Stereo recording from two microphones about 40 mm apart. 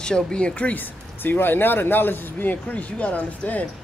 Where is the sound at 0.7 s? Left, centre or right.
Left.